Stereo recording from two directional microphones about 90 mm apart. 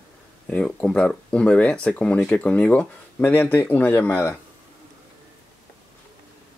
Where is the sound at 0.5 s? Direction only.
15° left (ahead or behind).